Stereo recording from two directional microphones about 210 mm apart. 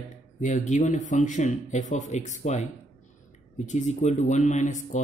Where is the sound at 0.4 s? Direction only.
35° left (ahead or behind).